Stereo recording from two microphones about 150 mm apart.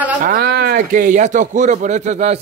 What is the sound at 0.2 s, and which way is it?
Speech, 70° right (ahead or behind).